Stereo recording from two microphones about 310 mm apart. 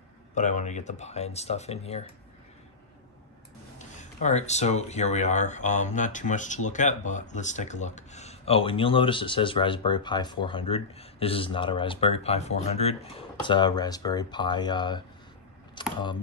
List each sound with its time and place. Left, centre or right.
0.3 s speech: left
3.7 s speech: left